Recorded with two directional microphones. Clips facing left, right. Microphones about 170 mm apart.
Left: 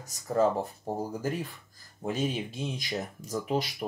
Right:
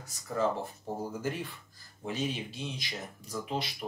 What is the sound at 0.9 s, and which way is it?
Speech, 45° left (ahead or behind).